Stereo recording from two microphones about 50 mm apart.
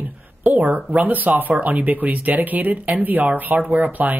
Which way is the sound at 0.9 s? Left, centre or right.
Right.